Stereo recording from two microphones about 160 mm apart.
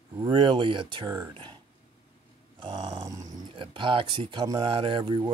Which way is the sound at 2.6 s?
25° right (ahead or behind).